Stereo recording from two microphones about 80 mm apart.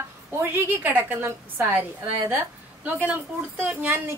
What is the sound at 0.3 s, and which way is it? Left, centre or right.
A woman's voice, right.